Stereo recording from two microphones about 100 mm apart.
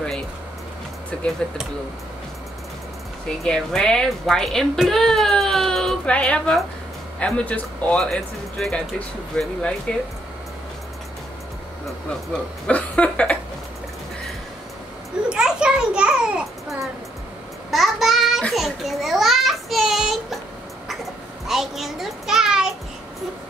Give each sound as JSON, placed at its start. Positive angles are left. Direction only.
{"t": 3.3, "sound": "a woman's voice", "side_deg": 5}
{"t": 8.0, "sound": "a woman's voice", "side_deg": 5}
{"t": 12.1, "sound": "speech", "side_deg": 10}
{"t": 15.2, "sound": "a sound", "side_deg": -10}
{"t": 17.6, "sound": "child singing", "side_deg": 0}
{"t": 18.5, "sound": "a sound", "side_deg": 0}